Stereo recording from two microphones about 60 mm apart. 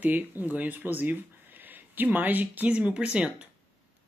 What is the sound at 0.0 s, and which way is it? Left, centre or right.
Speech, right.